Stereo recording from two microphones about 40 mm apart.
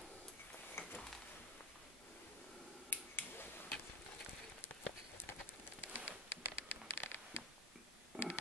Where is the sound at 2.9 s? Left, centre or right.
Left.